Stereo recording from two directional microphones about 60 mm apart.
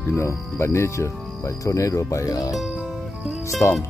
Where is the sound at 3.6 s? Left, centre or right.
Left.